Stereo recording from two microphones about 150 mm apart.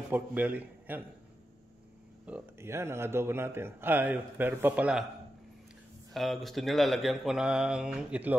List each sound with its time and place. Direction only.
0.1 s a man's voice: 10° right (ahead or behind)
2.2 s a man's voice: 10° right (ahead or behind)
6.1 s speech: centre (ahead or behind)